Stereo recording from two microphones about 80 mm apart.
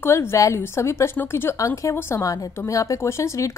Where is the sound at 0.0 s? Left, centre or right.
Left.